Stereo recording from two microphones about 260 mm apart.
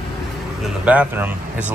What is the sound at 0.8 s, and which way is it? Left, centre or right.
Speech, centre.